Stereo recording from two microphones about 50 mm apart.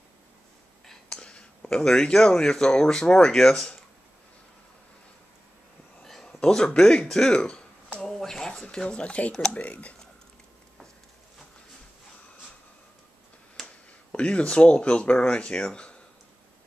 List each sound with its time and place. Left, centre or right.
1.1 s whispering: centre
1.7 s speech: centre
6.4 s speech: centre
9.7 s speech: left
13.6 s a sound: centre
14.1 s speech: left